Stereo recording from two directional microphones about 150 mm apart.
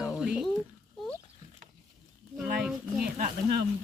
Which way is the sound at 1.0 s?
Centre (ahead or behind).